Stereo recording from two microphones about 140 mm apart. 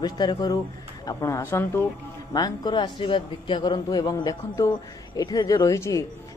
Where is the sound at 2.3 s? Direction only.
30° left (ahead or behind).